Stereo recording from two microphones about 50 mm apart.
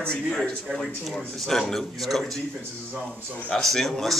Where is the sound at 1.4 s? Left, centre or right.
Centre.